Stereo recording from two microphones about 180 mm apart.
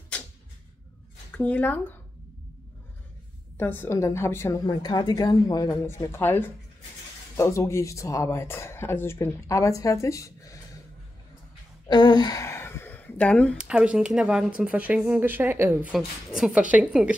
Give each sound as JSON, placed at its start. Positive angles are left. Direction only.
{"t": 1.3, "sound": "speech", "side_deg": 10}
{"t": 3.5, "sound": "speech", "side_deg": 10}
{"t": 11.9, "sound": "a sound", "side_deg": 25}
{"t": 13.6, "sound": "a woman's voice", "side_deg": -5}